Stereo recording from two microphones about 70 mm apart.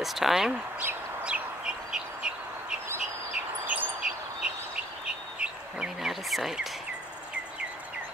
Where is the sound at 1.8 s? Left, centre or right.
Centre.